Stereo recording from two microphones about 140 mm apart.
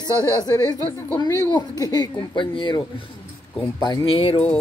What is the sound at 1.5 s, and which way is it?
Speech, 30° left (ahead or behind).